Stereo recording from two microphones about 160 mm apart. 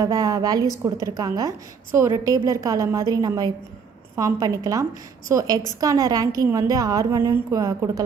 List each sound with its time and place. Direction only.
0.0 s a woman's voice: 20° right (ahead or behind)